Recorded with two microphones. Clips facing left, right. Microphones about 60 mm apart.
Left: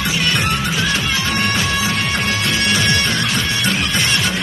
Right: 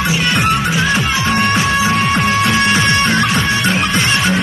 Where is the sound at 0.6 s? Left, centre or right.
Right.